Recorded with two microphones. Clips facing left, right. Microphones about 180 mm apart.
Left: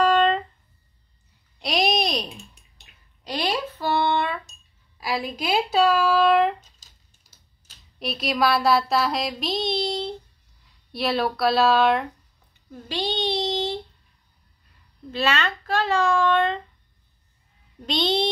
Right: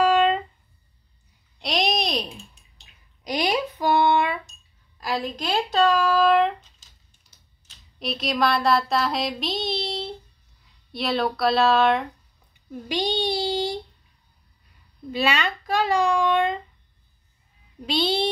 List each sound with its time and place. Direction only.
0.0 s a sound: 10° right (ahead or behind)
1.6 s babbling: centre (ahead or behind)
3.3 s a sound: 15° right (ahead or behind)
4.9 s speech: 5° left (ahead or behind)
8.0 s a sound: centre (ahead or behind)
10.9 s speech: centre (ahead or behind)
12.8 s child singing: 15° right (ahead or behind)
15.0 s a child's voice: 15° right (ahead or behind)
17.8 s a child's voice: 5° right (ahead or behind)